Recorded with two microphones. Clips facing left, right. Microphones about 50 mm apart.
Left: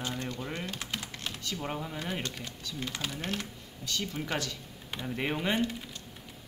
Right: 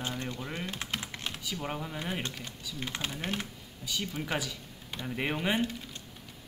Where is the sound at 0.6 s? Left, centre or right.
Centre.